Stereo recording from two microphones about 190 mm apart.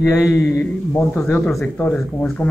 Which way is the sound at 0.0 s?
15° left (ahead or behind).